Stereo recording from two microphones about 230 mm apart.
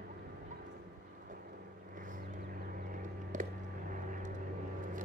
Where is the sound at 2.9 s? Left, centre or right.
Right.